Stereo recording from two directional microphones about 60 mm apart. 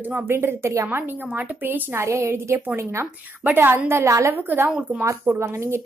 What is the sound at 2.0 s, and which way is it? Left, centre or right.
A woman's voice, right.